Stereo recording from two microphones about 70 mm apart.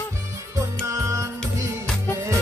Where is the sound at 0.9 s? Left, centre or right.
Right.